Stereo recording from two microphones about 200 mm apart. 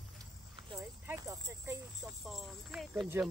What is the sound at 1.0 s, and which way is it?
Speech, 15° right (ahead or behind).